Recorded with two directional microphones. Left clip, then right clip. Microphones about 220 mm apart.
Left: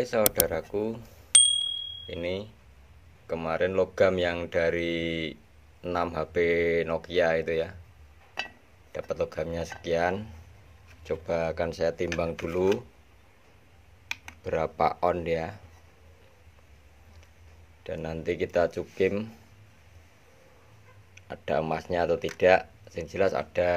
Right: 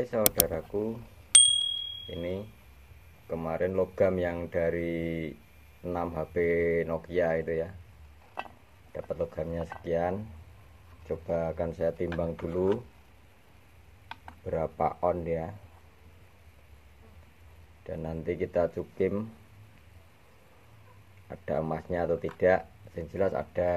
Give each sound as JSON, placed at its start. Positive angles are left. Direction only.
{"t": 0.1, "sound": "speech", "side_deg": 15}
{"t": 1.3, "sound": "bicycle bell", "side_deg": 0}
{"t": 2.0, "sound": "speech", "side_deg": 15}
{"t": 14.4, "sound": "speech", "side_deg": 25}
{"t": 17.8, "sound": "speech", "side_deg": 15}
{"t": 21.3, "sound": "speech", "side_deg": 15}